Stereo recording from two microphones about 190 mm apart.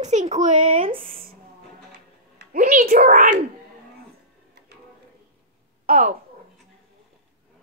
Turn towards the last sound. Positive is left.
turn(degrees=-40)  # may be behind; listen again after turning